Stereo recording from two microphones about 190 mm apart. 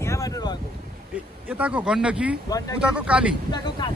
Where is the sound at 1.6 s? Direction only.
5° right (ahead or behind).